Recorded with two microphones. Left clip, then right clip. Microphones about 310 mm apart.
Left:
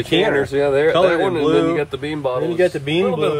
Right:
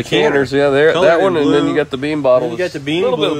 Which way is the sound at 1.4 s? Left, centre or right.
Centre.